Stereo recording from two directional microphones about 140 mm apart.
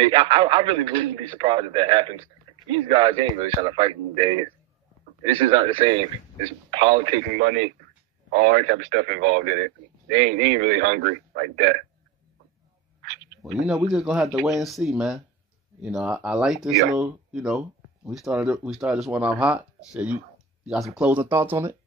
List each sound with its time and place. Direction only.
0.0 s a man's voice: 40° right (ahead or behind)
8.3 s speech: 80° right
9.4 s a man's voice: 80° right
13.4 s speech: 5° right (ahead or behind)